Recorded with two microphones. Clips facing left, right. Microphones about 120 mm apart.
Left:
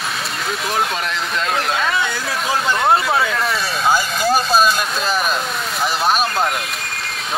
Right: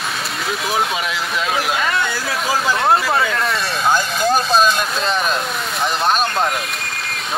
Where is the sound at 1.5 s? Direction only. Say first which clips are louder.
Even; centre (ahead or behind).